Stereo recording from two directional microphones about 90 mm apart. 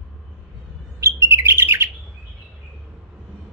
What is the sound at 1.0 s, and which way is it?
Bird, 30° right (ahead or behind).